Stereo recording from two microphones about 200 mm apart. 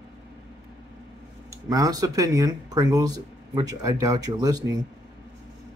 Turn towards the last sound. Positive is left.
turn(degrees=-20)  # may be behind; listen again after turning